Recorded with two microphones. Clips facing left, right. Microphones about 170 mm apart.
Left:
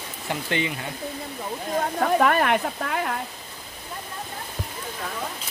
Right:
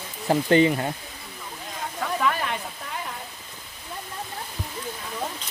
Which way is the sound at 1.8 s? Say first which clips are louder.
Left 8 dB; 55° left (ahead or behind).